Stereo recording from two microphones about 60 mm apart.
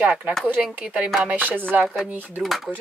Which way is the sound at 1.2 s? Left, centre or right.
Right.